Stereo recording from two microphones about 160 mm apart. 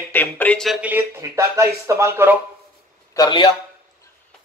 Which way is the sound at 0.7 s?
10° right (ahead or behind).